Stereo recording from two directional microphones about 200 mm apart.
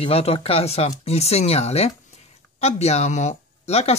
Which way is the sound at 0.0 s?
30° left (ahead or behind).